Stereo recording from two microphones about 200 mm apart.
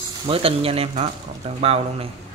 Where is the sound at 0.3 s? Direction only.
30° right (ahead or behind).